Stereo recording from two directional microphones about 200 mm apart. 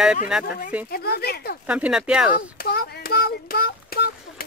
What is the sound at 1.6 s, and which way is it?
Speech, 5° right (ahead or behind).